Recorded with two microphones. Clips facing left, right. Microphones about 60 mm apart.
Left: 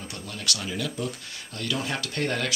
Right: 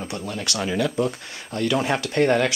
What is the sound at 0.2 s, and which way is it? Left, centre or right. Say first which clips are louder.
Speech: right 3 dB; right.